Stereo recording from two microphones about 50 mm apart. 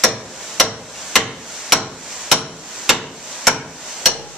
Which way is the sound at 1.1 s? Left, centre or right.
Centre.